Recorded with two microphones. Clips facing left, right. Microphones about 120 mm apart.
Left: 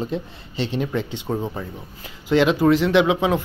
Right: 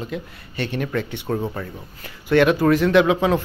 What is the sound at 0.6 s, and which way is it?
Speech, 20° left (ahead or behind).